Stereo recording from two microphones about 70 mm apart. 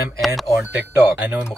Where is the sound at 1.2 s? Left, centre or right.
Right.